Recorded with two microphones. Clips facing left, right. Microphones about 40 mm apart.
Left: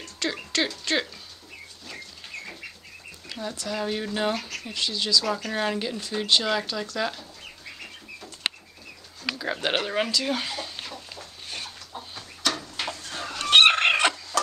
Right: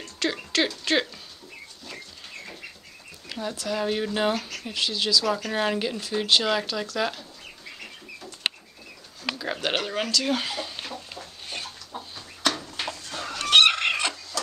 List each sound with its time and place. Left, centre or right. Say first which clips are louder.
0.0 s speech: right 2 dB; centre
3.3 s speech: right 2 dB; centre
9.4 s speech: left 1 dB; centre
10.2 s chicken: right 2 dB; centre
12.8 s chicken: left 1 dB; centre
13.2 s chicken: right 1 dB; centre
13.7 s chicken: left 5 dB; left